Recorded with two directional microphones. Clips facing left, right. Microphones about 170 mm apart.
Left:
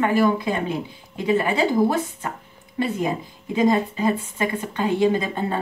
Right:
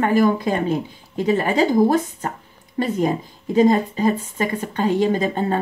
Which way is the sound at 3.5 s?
40° right (ahead or behind).